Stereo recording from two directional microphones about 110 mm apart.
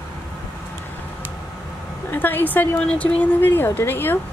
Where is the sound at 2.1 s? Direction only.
20° left (ahead or behind).